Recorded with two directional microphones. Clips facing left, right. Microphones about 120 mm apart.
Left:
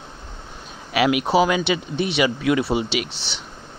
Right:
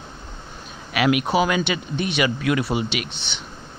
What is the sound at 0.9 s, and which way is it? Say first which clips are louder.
Speech: left 2 dB; 25° left (ahead or behind).